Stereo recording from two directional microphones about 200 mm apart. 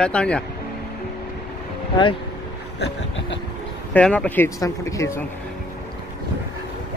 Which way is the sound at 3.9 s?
5° left (ahead or behind).